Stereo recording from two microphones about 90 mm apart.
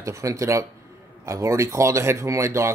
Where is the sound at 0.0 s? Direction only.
35° right (ahead or behind).